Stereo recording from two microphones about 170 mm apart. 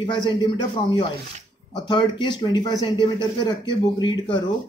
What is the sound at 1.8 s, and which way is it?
Speech, 25° left (ahead or behind).